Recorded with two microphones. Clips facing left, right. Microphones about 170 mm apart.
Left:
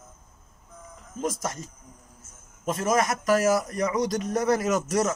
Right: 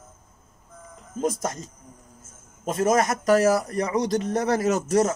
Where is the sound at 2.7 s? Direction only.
30° right (ahead or behind).